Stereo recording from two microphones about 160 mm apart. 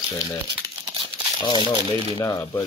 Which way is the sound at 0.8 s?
30° right (ahead or behind).